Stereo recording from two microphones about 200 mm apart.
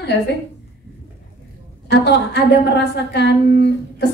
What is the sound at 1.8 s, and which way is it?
A woman's voice, 60° left (ahead or behind).